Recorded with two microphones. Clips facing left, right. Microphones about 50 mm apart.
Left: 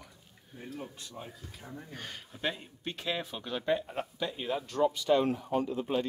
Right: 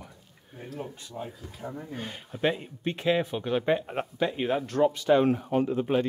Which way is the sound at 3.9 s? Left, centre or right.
Right.